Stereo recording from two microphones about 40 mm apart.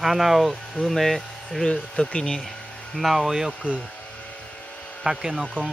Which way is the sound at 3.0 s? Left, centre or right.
Centre.